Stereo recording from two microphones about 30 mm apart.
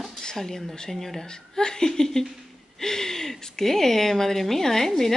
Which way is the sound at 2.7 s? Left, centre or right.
Centre.